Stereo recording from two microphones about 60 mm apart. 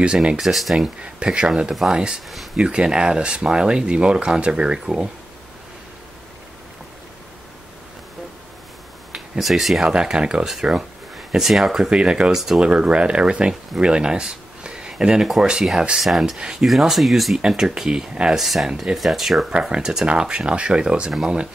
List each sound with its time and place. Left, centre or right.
0.0 s speech: centre
0.4 s speech: centre
0.8 s speech: centre
9.4 s speech: centre
9.8 s speech: centre
16.6 s speech: centre
17.4 s speech: centre